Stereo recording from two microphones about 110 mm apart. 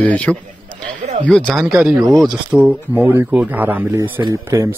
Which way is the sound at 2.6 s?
15° right (ahead or behind).